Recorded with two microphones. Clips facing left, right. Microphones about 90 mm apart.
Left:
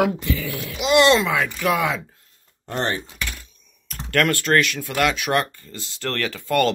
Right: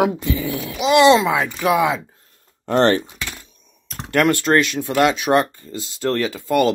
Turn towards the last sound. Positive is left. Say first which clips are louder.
# right 3 dB
turn(degrees=-15)  # may be behind; listen again after turning